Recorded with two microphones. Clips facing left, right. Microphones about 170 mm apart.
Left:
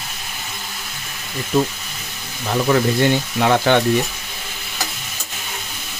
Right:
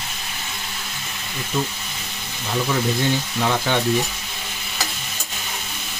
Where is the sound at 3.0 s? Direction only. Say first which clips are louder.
Left 5 dB; 65° left (ahead or behind).